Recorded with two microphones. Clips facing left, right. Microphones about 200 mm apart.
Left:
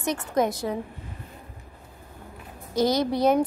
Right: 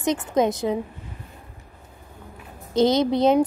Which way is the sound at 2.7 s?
20° right (ahead or behind).